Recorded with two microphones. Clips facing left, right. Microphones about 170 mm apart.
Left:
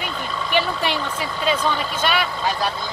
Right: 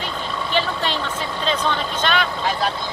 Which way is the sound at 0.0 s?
10° left (ahead or behind).